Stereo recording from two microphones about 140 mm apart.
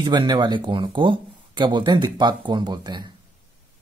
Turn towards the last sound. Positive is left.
turn(degrees=-30)  # may be behind; listen again after turning